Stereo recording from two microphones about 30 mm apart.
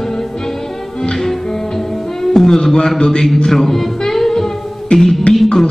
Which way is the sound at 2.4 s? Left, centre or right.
Centre.